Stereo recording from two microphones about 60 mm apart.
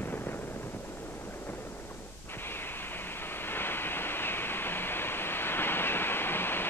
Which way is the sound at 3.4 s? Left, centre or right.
Left.